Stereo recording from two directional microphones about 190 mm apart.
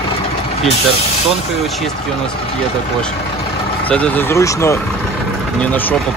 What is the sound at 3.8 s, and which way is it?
Speech, 5° left (ahead or behind).